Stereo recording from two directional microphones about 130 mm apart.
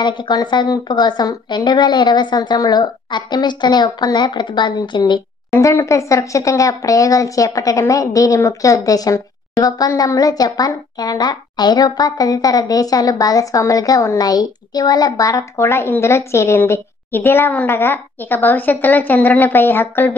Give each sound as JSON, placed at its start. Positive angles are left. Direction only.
{"t": 0.0, "sound": "a woman's voice", "side_deg": 35}
{"t": 5.5, "sound": "speech", "side_deg": 20}